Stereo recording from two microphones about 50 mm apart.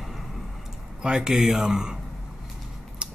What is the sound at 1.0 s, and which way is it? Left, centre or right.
Speech, centre.